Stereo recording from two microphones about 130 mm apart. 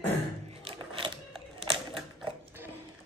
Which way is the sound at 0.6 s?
45° right (ahead or behind).